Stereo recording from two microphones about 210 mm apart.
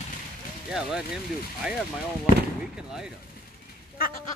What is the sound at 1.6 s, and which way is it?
Speech, 5° right (ahead or behind).